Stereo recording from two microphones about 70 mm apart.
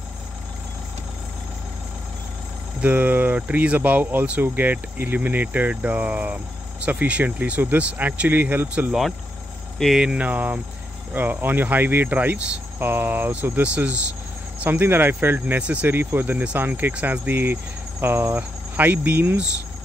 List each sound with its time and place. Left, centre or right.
2.8 s speech: right
9.9 s speech: centre